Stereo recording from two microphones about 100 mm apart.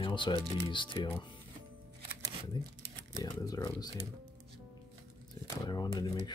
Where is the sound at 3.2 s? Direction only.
40° left (ahead or behind).